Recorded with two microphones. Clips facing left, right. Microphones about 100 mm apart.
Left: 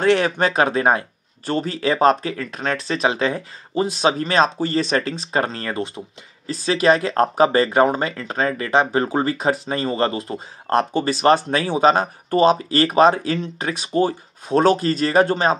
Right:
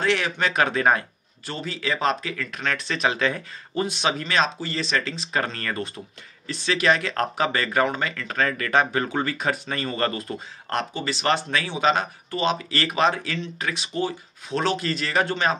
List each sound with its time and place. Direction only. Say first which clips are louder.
0.0 s speech: left 6 dB; 45° left (ahead or behind); by 1.0 s 25° left (ahead or behind)
1.4 s speech: left 9 dB; 45° left (ahead or behind)
10.9 s speech: left 7 dB; 45° left (ahead or behind)